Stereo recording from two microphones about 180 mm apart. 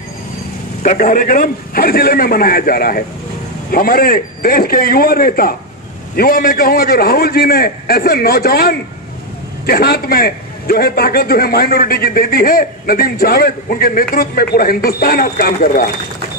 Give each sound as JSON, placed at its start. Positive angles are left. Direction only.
{"t": 0.8, "sound": "a man's voice", "side_deg": 50}